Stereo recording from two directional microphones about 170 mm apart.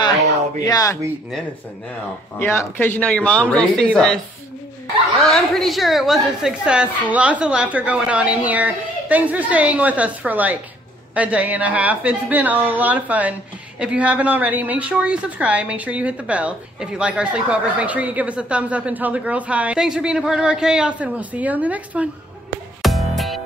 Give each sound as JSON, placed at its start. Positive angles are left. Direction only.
{"t": 0.7, "sound": "speech", "side_deg": 20}
{"t": 2.3, "sound": "a man's voice", "side_deg": 10}
{"t": 5.2, "sound": "a woman's voice", "side_deg": 0}
{"t": 22.8, "sound": "music", "side_deg": 0}